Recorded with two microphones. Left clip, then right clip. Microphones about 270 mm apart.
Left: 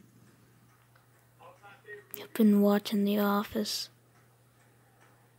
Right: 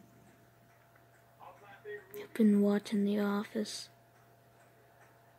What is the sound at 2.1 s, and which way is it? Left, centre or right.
Speech, centre.